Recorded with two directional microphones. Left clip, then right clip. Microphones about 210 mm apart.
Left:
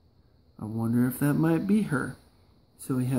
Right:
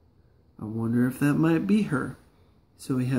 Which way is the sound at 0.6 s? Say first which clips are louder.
Right 1 dB; 20° left (ahead or behind).